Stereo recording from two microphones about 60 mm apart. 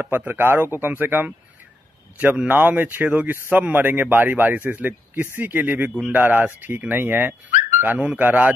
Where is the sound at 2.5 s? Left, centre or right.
Right.